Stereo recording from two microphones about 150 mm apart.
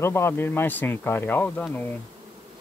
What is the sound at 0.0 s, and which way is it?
Speech, 15° left (ahead or behind).